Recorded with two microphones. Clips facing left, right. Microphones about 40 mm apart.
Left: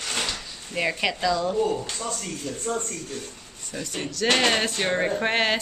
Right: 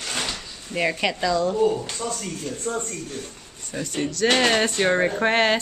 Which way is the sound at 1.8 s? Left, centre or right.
Centre.